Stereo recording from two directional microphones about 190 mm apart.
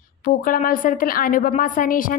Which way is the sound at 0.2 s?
45° left (ahead or behind).